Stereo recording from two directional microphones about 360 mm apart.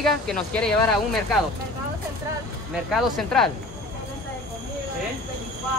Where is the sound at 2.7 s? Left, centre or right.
Centre.